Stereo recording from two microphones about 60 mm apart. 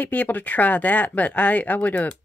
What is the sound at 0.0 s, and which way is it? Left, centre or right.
Speech, left.